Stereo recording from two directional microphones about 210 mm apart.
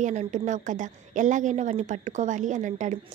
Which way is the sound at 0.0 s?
35° right (ahead or behind).